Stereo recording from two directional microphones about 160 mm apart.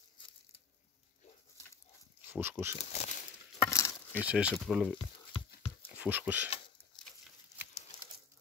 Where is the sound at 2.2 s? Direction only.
10° right (ahead or behind).